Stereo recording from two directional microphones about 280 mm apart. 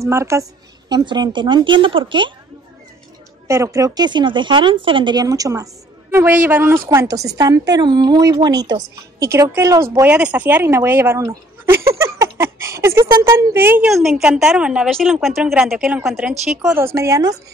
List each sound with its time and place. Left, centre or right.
0.0 s a woman's voice: centre
3.4 s a woman's voice: centre